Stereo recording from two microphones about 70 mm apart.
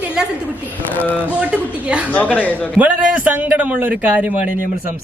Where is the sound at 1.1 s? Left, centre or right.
Right.